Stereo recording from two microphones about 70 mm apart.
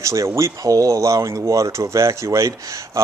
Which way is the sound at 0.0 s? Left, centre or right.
Right.